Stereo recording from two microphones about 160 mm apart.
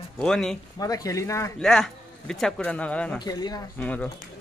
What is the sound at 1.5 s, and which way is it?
Speech, 5° left (ahead or behind).